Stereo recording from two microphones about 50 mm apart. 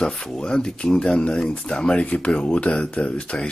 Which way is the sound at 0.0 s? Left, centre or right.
Centre.